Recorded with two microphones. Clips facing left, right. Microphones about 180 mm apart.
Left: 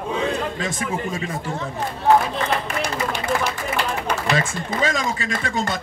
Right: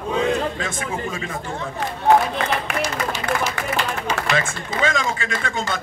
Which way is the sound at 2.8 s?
60° left (ahead or behind).